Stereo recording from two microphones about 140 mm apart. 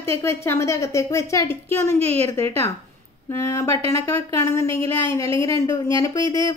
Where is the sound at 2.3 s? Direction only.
20° left (ahead or behind).